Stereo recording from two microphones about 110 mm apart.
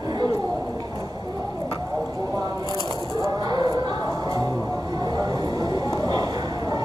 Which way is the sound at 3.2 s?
40° right (ahead or behind).